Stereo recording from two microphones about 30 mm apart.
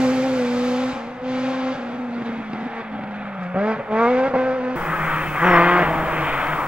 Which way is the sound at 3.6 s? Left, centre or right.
Right.